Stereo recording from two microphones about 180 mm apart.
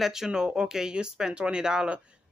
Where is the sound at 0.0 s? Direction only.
5° right (ahead or behind).